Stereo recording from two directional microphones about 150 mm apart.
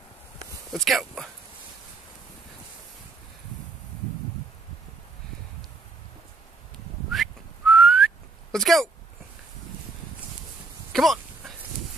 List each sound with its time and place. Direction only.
0.7 s speech: centre (ahead or behind)
7.1 s whistling: centre (ahead or behind)
10.9 s a sound: centre (ahead or behind)